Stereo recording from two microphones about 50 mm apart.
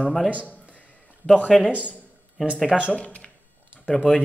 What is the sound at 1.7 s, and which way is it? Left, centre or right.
Speech, right.